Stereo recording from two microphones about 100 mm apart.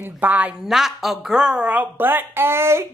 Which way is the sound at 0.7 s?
5° right (ahead or behind).